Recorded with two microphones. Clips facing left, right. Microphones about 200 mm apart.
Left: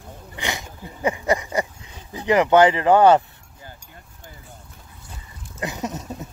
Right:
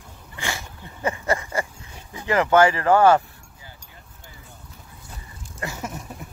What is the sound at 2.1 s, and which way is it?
Speech, 20° left (ahead or behind).